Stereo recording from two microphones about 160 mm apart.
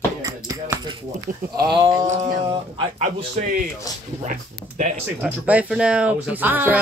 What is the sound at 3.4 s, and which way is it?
Speech, 60° right (ahead or behind).